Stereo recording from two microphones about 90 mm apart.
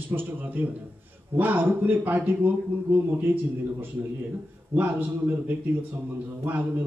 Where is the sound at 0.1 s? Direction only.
25° right (ahead or behind).